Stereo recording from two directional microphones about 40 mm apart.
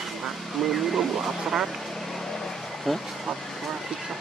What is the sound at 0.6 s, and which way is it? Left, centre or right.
Speech, centre.